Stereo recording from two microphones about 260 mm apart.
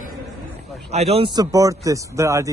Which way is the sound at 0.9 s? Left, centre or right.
Right.